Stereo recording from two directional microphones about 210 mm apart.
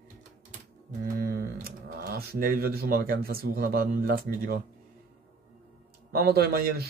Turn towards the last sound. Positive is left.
turn(degrees=-45)  # may be behind; listen again after turning